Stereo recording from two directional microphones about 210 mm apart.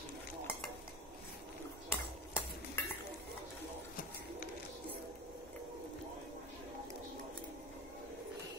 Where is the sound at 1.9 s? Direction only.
10° left (ahead or behind).